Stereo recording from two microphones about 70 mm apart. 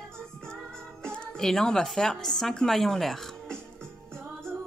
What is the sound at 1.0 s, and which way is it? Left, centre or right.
A woman's voice, centre.